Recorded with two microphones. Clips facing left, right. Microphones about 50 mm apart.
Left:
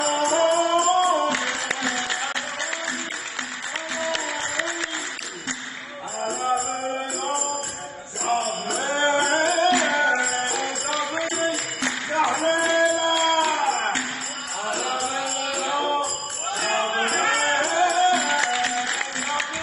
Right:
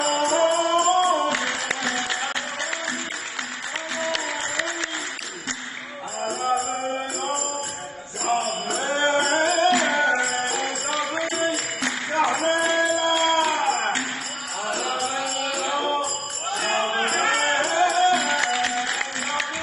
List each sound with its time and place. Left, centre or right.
0.3 s music: centre
3.9 s music: centre
6.2 s music: centre
7.0 s jingle bell: centre
8.9 s music: centre
12.8 s a sound: centre
14.6 s music: centre
15.9 s jingle bell: centre
18.1 s music: centre